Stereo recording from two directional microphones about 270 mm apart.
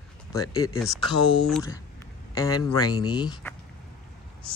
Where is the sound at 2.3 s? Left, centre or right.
Centre.